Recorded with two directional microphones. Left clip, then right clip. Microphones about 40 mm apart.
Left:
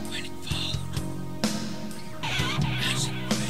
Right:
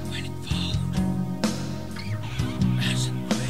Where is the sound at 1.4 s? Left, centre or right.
Centre.